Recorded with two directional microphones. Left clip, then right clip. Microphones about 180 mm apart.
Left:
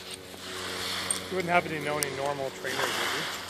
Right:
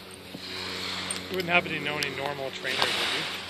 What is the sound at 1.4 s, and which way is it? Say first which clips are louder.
Speech: right 1 dB; 30° left (ahead or behind).